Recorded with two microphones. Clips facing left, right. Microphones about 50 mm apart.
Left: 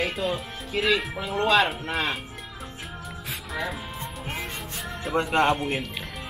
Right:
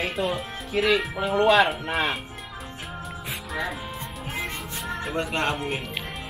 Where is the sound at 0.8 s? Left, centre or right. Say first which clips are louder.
Right 2 dB; right.